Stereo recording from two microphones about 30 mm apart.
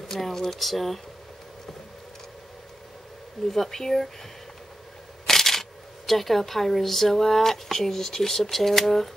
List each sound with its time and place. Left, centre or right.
0.1 s speech: centre
3.4 s speech: centre
5.2 s speech: centre